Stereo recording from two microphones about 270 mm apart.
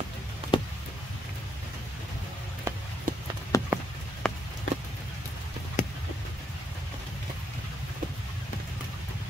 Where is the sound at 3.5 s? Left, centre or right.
Centre.